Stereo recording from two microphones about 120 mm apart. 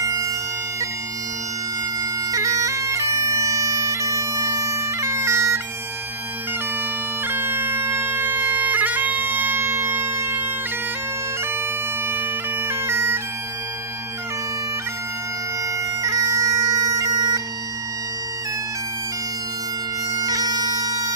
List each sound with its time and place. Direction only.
0.0 s bagpipes: 25° right (ahead or behind)
2.3 s bagpipes: 25° right (ahead or behind)
7.2 s bagpipes: 15° right (ahead or behind)
12.6 s bagpipes: 20° right (ahead or behind)
16.0 s bagpipes: 25° right (ahead or behind)
20.2 s bagpipes: 30° right (ahead or behind)